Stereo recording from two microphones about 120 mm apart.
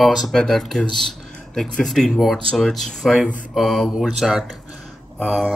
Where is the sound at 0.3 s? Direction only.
5° left (ahead or behind).